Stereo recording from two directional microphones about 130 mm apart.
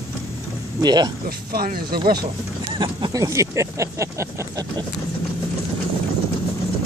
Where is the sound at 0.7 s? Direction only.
30° right (ahead or behind).